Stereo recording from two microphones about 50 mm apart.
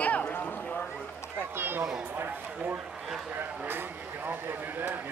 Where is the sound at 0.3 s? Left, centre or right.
Left.